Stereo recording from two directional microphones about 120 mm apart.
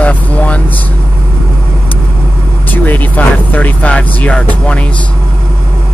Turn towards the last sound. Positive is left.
turn(degrees=10)  # may be behind; listen again after turning